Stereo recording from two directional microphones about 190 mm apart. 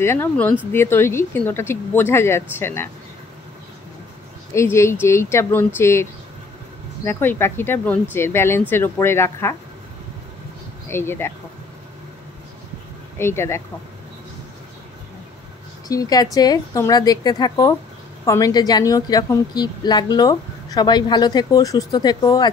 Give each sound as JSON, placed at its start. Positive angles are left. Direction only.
{"t": 0.0, "sound": "speech", "side_deg": 10}
{"t": 4.6, "sound": "speech", "side_deg": 15}
{"t": 7.1, "sound": "speech", "side_deg": 10}
{"t": 10.9, "sound": "speech", "side_deg": 10}
{"t": 13.2, "sound": "speech", "side_deg": 15}
{"t": 15.9, "sound": "a woman's voice", "side_deg": 20}